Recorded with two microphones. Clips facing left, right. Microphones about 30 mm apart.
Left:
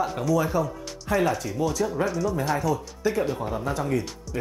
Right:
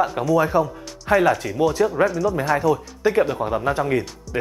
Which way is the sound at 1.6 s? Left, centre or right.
Right.